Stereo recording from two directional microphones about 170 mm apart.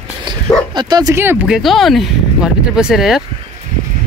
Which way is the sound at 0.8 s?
25° right (ahead or behind).